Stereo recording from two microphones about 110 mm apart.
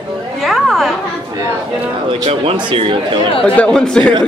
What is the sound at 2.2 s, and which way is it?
Speech, 60° right (ahead or behind).